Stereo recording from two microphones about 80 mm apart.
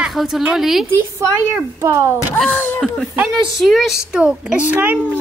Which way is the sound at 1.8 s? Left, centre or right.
Right.